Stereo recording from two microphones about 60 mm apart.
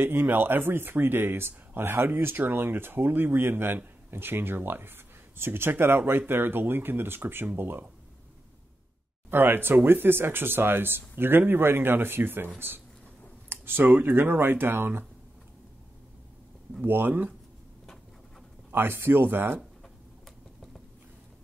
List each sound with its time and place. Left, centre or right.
0.0 s speech: right
9.3 s speech: right
16.8 s speech: right
18.7 s speech: right